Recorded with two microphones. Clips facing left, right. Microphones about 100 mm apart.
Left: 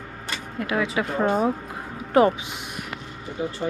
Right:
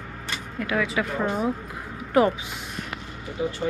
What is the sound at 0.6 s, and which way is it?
Speech, 25° left (ahead or behind).